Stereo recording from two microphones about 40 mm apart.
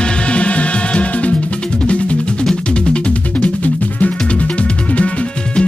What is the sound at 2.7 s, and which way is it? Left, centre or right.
Music, left.